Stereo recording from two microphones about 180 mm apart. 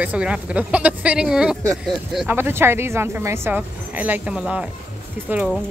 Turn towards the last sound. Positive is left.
turn(degrees=-5)  # may be behind; listen again after turning